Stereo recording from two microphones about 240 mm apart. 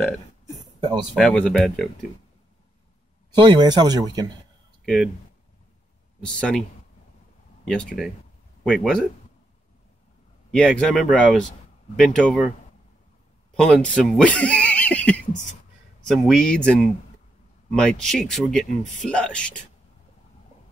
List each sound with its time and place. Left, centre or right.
1.1 s speech: centre
3.3 s speech: centre
4.8 s speech: centre
6.2 s speech: centre
7.6 s speech: centre
10.5 s speech: centre
13.6 s speech: centre